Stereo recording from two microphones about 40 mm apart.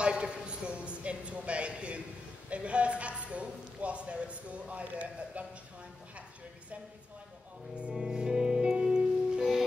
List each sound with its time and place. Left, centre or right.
0.0 s a woman's voice: right
7.9 s music: centre